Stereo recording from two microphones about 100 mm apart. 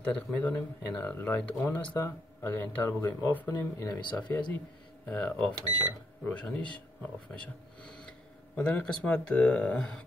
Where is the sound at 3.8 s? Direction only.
45° left (ahead or behind).